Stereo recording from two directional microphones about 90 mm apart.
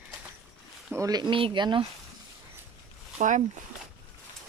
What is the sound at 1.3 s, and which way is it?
Speech, 75° right (ahead or behind).